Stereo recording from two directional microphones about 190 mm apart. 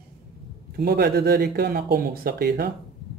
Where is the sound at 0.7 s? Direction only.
55° right (ahead or behind).